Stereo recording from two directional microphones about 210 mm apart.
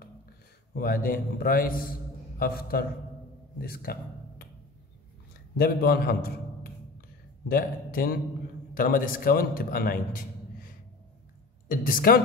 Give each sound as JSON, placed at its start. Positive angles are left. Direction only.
{"t": 0.7, "sound": "a man's voice", "side_deg": 45}
{"t": 5.6, "sound": "a man's voice", "side_deg": 45}
{"t": 11.7, "sound": "a man's voice", "side_deg": 40}